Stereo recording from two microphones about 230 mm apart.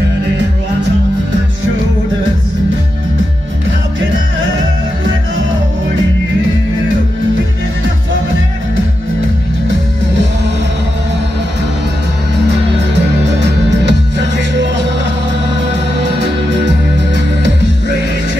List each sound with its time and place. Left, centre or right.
12.4 s music: right
16.0 s music: right